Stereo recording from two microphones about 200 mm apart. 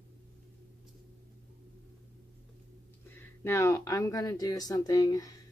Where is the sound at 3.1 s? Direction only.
10° left (ahead or behind).